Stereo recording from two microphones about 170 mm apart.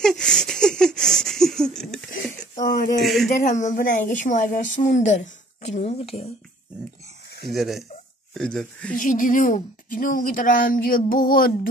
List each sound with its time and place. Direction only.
0.0 s laughter: 5° left (ahead or behind)
2.7 s a woman's voice: 50° left (ahead or behind)
3.0 s speech: centre (ahead or behind)
3.3 s a woman's voice: 45° left (ahead or behind)
5.8 s speech: 35° left (ahead or behind)
7.5 s speech: centre (ahead or behind)
8.9 s a woman's voice: 50° left (ahead or behind)
11.1 s music: 55° left (ahead or behind)